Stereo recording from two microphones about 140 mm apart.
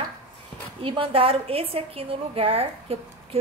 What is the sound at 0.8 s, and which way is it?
A woman's voice, 40° right (ahead or behind).